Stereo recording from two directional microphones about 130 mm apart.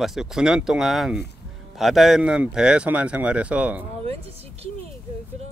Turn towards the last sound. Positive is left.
turn(degrees=-50)  # may be behind; listen again after turning